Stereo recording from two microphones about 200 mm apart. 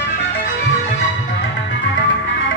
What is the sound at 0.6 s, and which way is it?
Music, 65° left (ahead or behind).